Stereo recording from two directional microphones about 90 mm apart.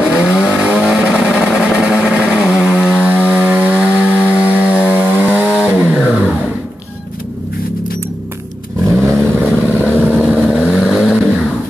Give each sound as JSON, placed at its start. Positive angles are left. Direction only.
{"t": 0.1, "sound": "vehicle", "side_deg": -5}
{"t": 9.0, "sound": "vehicle", "side_deg": -20}
{"t": 10.1, "sound": "vehicle", "side_deg": -10}